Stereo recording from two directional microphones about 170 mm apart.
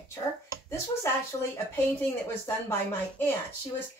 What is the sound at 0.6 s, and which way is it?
Speech, 15° left (ahead or behind).